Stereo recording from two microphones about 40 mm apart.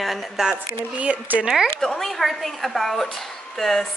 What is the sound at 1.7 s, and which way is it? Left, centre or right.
A woman's voice, centre.